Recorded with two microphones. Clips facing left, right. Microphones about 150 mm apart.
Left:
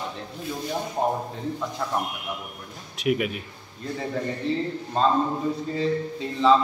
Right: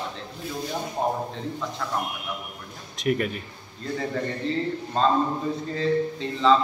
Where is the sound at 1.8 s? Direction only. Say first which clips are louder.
Left 2 dB; 15° left (ahead or behind).